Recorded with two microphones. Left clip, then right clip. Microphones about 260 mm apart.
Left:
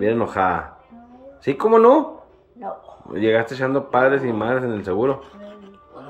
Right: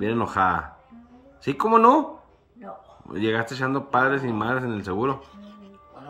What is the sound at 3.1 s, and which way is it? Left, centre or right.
Speech, right.